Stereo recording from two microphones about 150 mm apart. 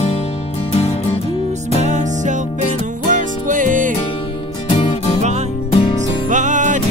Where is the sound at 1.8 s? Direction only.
55° right (ahead or behind).